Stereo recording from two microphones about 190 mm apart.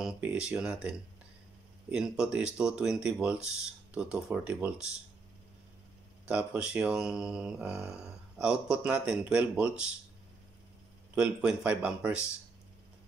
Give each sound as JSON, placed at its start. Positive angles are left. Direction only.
{"t": 0.0, "sound": "speech", "side_deg": -5}
{"t": 6.2, "sound": "speech", "side_deg": -5}
{"t": 11.1, "sound": "speech", "side_deg": -5}